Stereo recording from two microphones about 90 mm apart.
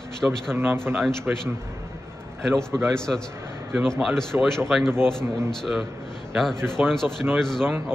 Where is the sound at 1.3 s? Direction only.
10° right (ahead or behind).